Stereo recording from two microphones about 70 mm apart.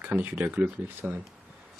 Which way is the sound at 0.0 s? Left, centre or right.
Right.